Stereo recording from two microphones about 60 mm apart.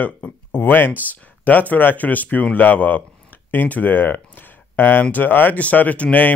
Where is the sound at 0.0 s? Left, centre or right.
Left.